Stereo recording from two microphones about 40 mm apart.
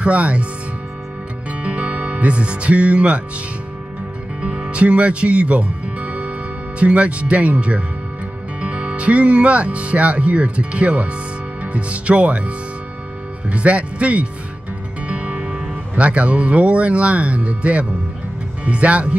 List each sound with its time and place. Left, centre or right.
0.0 s speech: right
1.5 s music: right
4.4 s music: right
6.8 s speech: right